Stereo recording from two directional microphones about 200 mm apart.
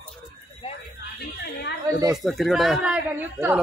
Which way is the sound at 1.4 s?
55° left (ahead or behind).